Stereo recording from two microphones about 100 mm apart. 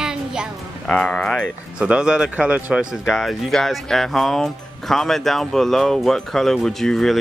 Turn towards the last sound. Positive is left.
turn(degrees=5)  # may be behind; listen again after turning